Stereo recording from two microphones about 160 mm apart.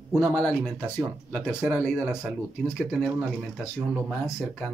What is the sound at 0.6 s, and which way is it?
Speech, 5° right (ahead or behind).